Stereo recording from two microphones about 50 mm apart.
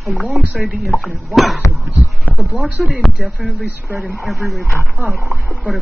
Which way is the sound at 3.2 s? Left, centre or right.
Right.